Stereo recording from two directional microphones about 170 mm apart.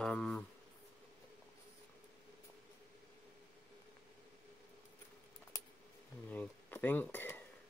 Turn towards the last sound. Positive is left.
turn(degrees=10)  # may be behind; listen again after turning